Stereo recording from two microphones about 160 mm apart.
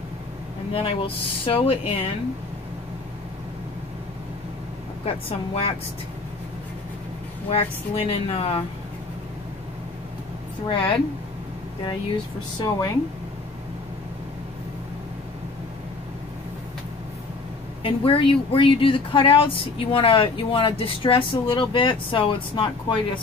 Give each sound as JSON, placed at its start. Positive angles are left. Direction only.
{"t": 0.8, "sound": "speech", "side_deg": 35}
{"t": 5.0, "sound": "speech", "side_deg": 35}
{"t": 7.4, "sound": "speech", "side_deg": 40}
{"t": 10.7, "sound": "speech", "side_deg": 30}
{"t": 12.5, "sound": "a woman's voice", "side_deg": 20}
{"t": 17.8, "sound": "speech", "side_deg": 35}